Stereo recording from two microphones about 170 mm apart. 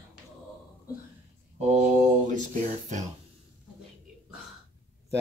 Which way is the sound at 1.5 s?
45° right (ahead or behind).